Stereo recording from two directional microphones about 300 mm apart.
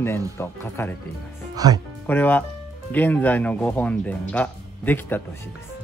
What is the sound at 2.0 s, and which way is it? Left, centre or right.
Speech, centre.